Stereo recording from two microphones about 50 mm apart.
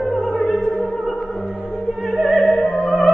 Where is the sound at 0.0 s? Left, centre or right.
Left.